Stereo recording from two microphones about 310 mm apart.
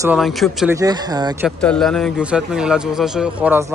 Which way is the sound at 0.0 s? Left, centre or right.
Centre.